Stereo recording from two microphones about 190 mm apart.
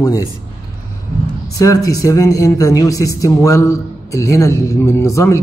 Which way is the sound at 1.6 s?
20° left (ahead or behind).